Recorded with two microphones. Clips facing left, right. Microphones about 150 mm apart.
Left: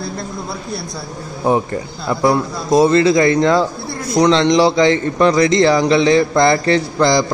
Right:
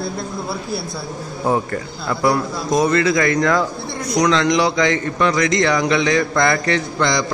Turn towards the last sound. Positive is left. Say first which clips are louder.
# left 5 dB
turn(degrees=35)  # may be behind; listen again after turning